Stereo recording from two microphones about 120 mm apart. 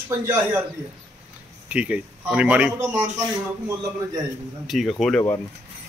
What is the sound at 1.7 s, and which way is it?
Speech, 10° right (ahead or behind).